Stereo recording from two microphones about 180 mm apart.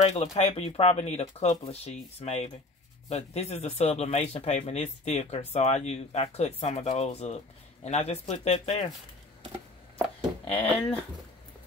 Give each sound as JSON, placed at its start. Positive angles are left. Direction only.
{"t": 0.0, "sound": "speech", "side_deg": 35}
{"t": 10.4, "sound": "speech", "side_deg": 30}